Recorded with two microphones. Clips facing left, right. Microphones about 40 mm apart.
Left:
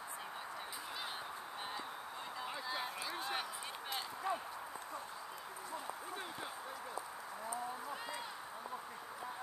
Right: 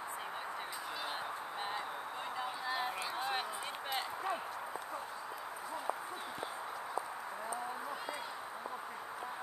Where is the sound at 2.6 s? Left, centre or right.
Right.